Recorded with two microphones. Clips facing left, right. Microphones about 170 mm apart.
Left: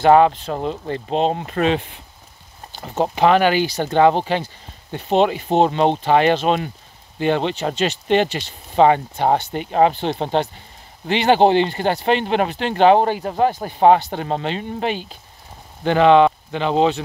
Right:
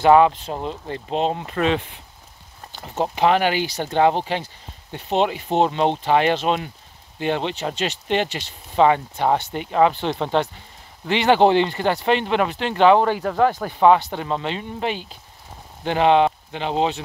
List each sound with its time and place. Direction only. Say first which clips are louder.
0.5 s speech: left 3 dB; 60° left (ahead or behind)
1.1 s speech: left 3 dB; 25° left (ahead or behind)
2.8 s speech: left 3 dB; 45° left (ahead or behind); by 13.8 s 25° left (ahead or behind)
13.8 s speech: left 2 dB; 40° left (ahead or behind)